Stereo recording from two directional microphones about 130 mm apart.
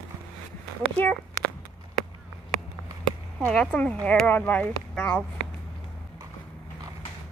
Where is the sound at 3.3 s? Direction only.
5° left (ahead or behind).